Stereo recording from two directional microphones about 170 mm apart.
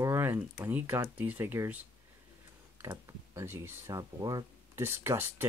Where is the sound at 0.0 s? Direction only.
15° right (ahead or behind).